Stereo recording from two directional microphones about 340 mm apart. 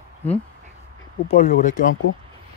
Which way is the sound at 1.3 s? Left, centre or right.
Left.